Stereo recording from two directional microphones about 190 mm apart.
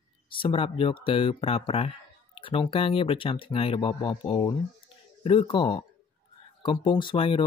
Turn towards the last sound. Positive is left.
turn(degrees=30)  # may be behind; listen again after turning